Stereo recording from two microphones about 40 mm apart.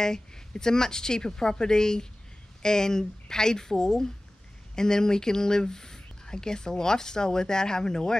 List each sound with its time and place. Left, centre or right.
0.0 s speech: centre